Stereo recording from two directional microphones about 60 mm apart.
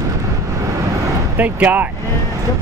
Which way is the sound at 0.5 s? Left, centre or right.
Right.